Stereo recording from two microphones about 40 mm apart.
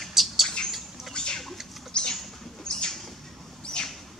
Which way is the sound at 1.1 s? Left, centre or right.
Left.